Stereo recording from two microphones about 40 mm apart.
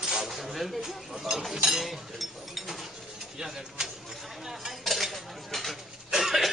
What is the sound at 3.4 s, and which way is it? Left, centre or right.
Speech, centre.